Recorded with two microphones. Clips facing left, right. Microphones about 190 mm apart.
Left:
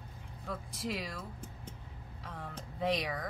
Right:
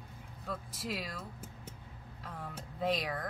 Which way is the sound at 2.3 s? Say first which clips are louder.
Even; 5° right (ahead or behind).